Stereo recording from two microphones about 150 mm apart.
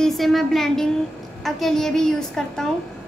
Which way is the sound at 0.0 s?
Centre (ahead or behind).